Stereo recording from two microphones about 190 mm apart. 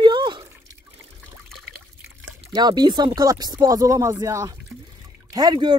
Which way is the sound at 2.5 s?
20° right (ahead or behind).